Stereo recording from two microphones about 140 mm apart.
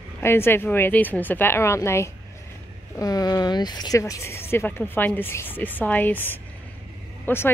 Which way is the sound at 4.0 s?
20° left (ahead or behind).